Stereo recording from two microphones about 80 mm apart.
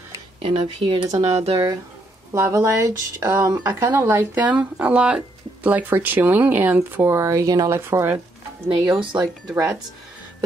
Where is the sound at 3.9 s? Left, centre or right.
Right.